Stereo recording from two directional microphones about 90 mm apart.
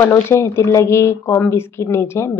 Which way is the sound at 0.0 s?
30° left (ahead or behind).